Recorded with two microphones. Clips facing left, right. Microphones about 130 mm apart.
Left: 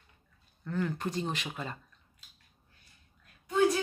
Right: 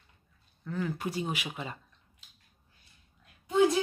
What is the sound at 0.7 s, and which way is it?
Speech, 5° right (ahead or behind).